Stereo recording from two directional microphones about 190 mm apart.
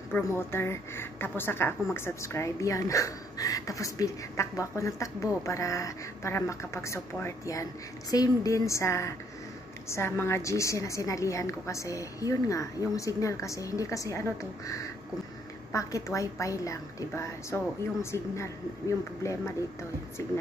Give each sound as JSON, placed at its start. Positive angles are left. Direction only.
{"t": 0.1, "sound": "a woman's voice", "side_deg": 10}